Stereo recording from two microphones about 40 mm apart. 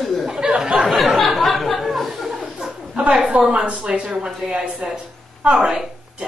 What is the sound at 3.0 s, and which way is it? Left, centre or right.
Speech, right.